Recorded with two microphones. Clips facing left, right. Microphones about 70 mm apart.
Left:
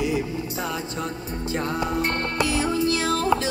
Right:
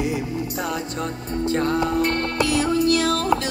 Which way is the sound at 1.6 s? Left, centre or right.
Left.